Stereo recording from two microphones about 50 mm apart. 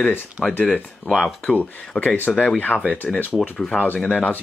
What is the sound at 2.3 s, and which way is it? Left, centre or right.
Speech, left.